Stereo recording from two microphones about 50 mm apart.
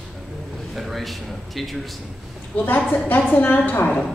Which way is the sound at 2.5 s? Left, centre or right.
Left.